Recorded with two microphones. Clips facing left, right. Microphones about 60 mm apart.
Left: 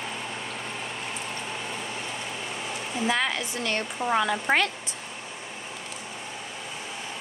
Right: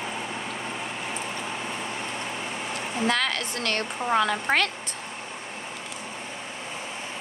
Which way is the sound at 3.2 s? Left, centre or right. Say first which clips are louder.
Right 1 dB; right.